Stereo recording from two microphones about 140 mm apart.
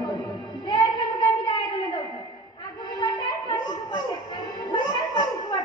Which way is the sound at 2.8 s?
30° left (ahead or behind).